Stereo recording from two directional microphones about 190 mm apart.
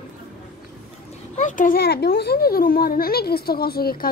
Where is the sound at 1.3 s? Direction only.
40° left (ahead or behind).